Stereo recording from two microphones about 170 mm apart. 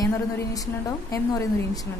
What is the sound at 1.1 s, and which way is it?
Speech, 20° left (ahead or behind).